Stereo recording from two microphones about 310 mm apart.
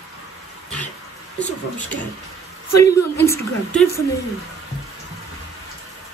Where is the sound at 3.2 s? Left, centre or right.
Centre.